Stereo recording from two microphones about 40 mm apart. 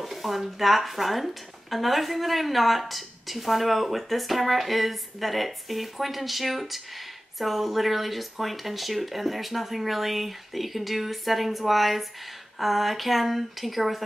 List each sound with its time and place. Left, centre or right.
0.0 s speech: centre